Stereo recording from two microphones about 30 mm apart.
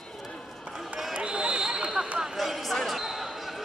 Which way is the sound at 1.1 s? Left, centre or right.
Right.